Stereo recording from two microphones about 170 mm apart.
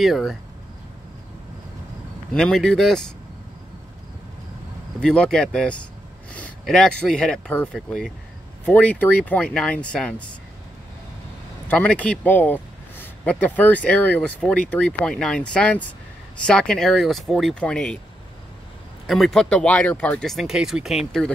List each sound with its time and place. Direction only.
0.0 s speech: centre (ahead or behind)
2.3 s speech: 5° left (ahead or behind)
5.0 s speech: 5° left (ahead or behind)
11.6 s speech: 10° left (ahead or behind)
19.0 s speech: centre (ahead or behind)